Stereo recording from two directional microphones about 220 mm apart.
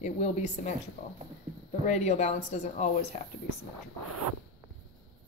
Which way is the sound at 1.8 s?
30° left (ahead or behind).